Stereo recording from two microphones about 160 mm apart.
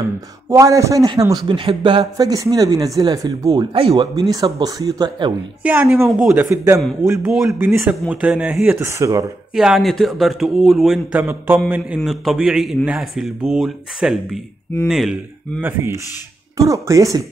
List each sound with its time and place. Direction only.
0.5 s a man's voice: 20° right (ahead or behind)
5.6 s speech: 10° right (ahead or behind)
8.8 s a man's voice: 20° right (ahead or behind)
9.6 s a man's voice: centre (ahead or behind)
15.6 s a man's voice: 15° right (ahead or behind)